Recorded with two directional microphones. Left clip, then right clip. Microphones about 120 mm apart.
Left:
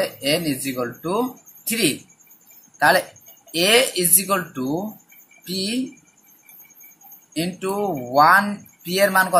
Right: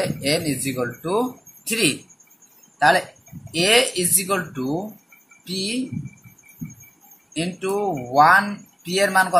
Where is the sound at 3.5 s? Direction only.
15° left (ahead or behind).